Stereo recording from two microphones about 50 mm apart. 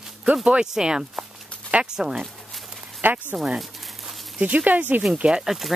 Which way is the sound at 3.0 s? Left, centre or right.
Right.